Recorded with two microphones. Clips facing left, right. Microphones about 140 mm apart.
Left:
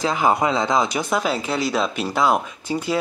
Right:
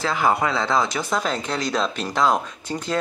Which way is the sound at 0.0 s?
15° left (ahead or behind).